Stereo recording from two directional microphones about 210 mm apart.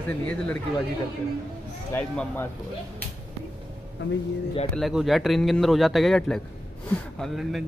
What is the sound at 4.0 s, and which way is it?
Speech, 60° left (ahead or behind).